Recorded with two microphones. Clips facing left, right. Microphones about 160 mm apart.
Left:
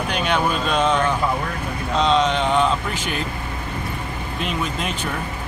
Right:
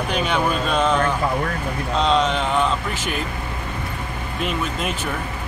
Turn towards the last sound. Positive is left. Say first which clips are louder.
# right 1 dB
turn(degrees=0)  # may be behind; listen again after turning